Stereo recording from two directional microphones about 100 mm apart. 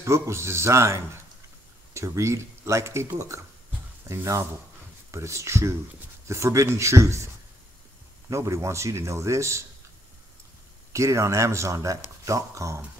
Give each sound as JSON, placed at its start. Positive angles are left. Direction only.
{"t": 0.0, "sound": "speech", "side_deg": -30}
{"t": 8.3, "sound": "speech", "side_deg": -30}
{"t": 10.9, "sound": "speech", "side_deg": -30}